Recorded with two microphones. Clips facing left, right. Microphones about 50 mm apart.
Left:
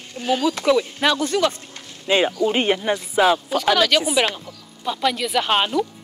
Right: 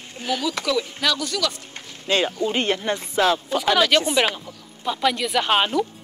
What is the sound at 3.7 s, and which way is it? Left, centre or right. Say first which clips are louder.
Speech: even; centre.